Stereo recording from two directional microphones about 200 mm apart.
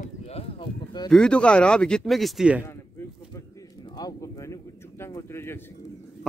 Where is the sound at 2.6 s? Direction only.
15° left (ahead or behind).